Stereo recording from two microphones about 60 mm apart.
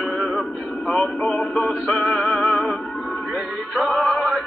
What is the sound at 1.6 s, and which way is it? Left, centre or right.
Music, centre.